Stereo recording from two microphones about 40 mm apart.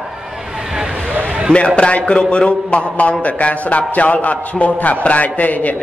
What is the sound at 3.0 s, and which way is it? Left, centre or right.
A man's voice, left.